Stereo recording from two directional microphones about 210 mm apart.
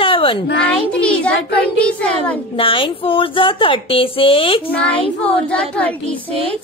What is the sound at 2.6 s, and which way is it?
Speech, 25° left (ahead or behind).